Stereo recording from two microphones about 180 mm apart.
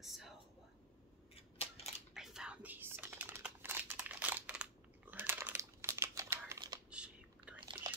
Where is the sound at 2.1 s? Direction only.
5° right (ahead or behind); by 6.7 s 20° right (ahead or behind).